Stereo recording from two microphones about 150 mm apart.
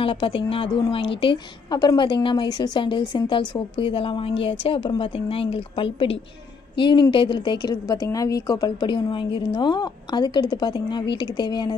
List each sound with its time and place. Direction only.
0.0 s a woman's voice: 35° left (ahead or behind)